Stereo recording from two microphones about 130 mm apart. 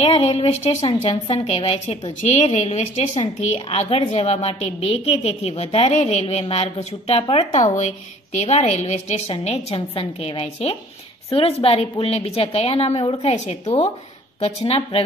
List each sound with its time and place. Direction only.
0.0 s a woman's voice: 50° left (ahead or behind)
7.6 s a woman's voice: 65° left (ahead or behind); by 15.0 s 45° left (ahead or behind)